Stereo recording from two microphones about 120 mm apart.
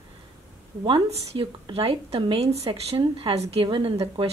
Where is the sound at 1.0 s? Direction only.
60° right (ahead or behind).